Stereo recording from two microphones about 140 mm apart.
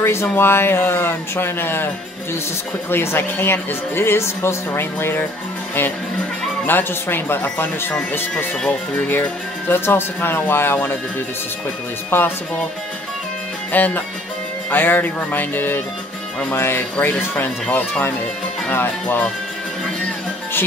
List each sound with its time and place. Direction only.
0.0 s speech: 15° left (ahead or behind)
2.9 s speech: 15° left (ahead or behind)
6.6 s speech: 15° left (ahead or behind)
12.1 s speech: 15° left (ahead or behind)
13.7 s music: 10° left (ahead or behind)
14.7 s speech: 15° left (ahead or behind)